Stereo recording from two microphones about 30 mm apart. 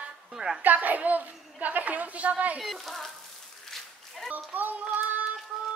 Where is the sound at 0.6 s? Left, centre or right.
Right.